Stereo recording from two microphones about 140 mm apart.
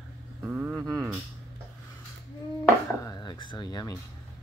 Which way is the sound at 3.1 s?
30° left (ahead or behind).